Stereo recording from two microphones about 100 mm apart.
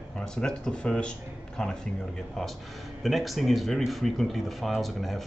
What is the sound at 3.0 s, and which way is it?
A man's voice, centre (ahead or behind).